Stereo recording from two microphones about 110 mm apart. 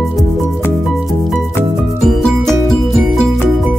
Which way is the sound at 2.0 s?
Centre (ahead or behind).